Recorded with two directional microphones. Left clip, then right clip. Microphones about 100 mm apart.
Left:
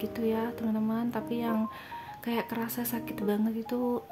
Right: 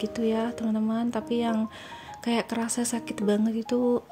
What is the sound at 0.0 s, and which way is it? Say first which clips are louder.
Speech: right 3 dB; 40° right (ahead or behind).